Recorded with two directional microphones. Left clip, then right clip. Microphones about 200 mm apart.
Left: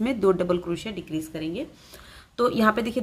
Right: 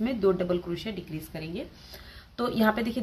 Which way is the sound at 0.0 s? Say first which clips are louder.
Left 3 dB; 30° left (ahead or behind).